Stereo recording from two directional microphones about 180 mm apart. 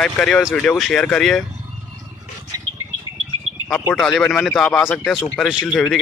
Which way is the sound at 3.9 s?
5° left (ahead or behind).